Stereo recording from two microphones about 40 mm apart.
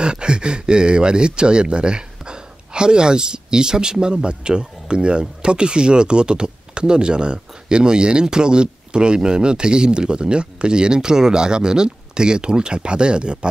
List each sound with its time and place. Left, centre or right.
0.0 s speech: right